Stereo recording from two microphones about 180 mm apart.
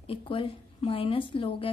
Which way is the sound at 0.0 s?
30° left (ahead or behind).